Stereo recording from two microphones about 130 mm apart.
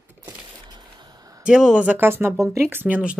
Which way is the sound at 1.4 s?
5° right (ahead or behind).